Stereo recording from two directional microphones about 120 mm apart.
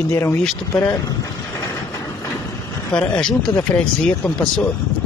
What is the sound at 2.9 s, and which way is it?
Speech, 10° left (ahead or behind).